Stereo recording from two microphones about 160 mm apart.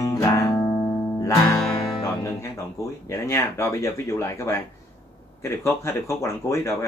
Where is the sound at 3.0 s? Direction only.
20° left (ahead or behind).